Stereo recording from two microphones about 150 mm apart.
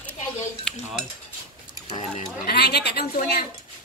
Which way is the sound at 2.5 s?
90° left.